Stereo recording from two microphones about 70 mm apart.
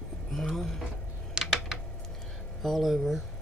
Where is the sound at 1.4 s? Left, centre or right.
Centre.